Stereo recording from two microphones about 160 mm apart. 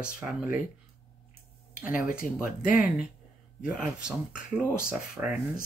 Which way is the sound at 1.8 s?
10° right (ahead or behind).